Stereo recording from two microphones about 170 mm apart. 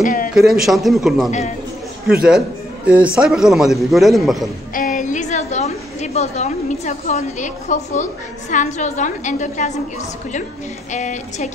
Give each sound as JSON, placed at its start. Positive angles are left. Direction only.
{"t": 0.0, "sound": "a man's voice", "side_deg": 55}
{"t": 0.3, "sound": "a man's voice", "side_deg": 0}
{"t": 2.9, "sound": "a man's voice", "side_deg": -5}
{"t": 4.7, "sound": "a woman's voice", "side_deg": 45}
{"t": 10.9, "sound": "a woman's voice", "side_deg": 45}